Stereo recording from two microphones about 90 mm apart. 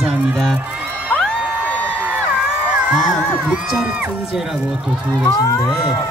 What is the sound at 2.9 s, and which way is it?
Speech, 10° right (ahead or behind).